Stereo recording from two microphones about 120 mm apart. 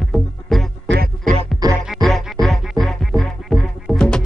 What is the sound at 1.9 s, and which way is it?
Music, centre (ahead or behind).